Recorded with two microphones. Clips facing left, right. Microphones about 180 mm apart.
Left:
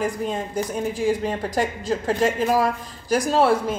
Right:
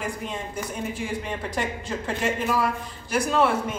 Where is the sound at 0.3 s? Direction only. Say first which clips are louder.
Left 6 dB; 40° left (ahead or behind).